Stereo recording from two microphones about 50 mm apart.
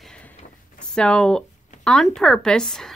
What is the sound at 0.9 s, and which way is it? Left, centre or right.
A woman's voice, centre.